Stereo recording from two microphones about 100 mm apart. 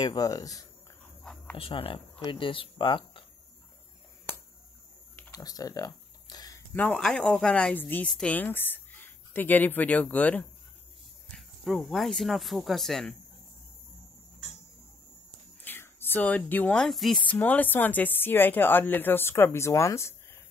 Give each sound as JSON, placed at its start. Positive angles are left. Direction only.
{"t": 0.0, "sound": "speech", "side_deg": 40}
{"t": 1.6, "sound": "speech", "side_deg": 65}
{"t": 5.3, "sound": "a sound", "side_deg": 40}
{"t": 6.7, "sound": "speech", "side_deg": 20}
{"t": 7.0, "sound": "speech", "side_deg": 5}
{"t": 7.7, "sound": "speech", "side_deg": 20}
{"t": 11.2, "sound": "speech", "side_deg": 5}
{"t": 15.6, "sound": "a sound", "side_deg": 20}
{"t": 16.8, "sound": "speech", "side_deg": 0}
{"t": 17.2, "sound": "speech", "side_deg": 15}